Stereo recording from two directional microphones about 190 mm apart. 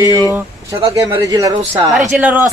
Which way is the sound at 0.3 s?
15° right (ahead or behind).